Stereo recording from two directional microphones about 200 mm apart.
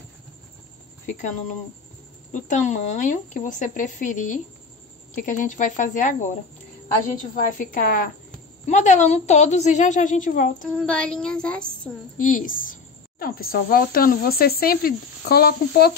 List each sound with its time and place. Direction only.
2.3 s a woman's voice: 40° left (ahead or behind)
10.8 s a woman's voice: 5° left (ahead or behind)
12.2 s speech: 40° left (ahead or behind)